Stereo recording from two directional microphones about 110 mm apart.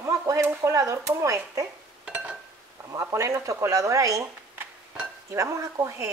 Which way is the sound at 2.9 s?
30° right (ahead or behind).